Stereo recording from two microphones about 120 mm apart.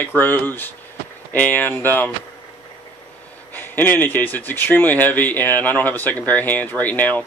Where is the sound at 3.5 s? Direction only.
15° left (ahead or behind).